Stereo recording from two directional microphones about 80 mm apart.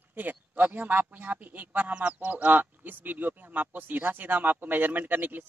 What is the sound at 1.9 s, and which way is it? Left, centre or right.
Speech, centre.